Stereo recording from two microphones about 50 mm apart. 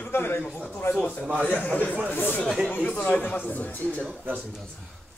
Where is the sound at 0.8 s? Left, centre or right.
Left.